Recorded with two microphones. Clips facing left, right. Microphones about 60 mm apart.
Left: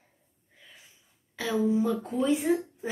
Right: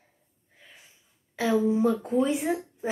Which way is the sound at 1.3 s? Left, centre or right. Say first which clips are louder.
Right 3 dB; right.